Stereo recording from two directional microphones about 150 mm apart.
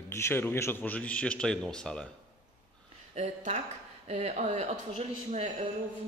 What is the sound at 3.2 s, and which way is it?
Speech, 45° right (ahead or behind).